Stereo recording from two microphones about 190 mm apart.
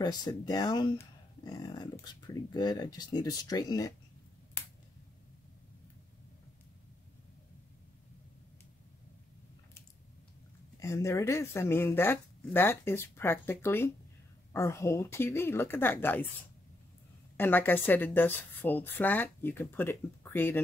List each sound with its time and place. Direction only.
0.0 s speech: 20° left (ahead or behind)
10.8 s speech: 15° left (ahead or behind)
17.4 s speech: 10° left (ahead or behind)